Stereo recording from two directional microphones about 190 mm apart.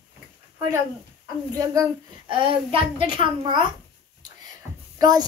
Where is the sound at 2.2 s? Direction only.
30° right (ahead or behind).